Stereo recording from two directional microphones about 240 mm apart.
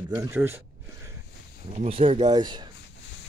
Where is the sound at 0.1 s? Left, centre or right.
Centre.